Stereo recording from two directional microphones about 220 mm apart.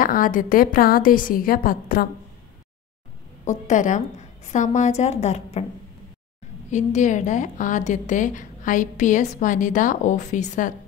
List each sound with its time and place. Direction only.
0.0 s a woman's voice: 40° left (ahead or behind)
3.4 s a woman's voice: 35° left (ahead or behind)
6.7 s a woman's voice: 35° left (ahead or behind)